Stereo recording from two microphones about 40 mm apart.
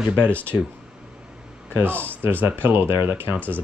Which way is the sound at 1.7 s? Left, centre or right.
Right.